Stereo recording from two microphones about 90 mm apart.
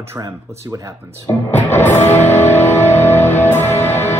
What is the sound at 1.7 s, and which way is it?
Music, 25° left (ahead or behind).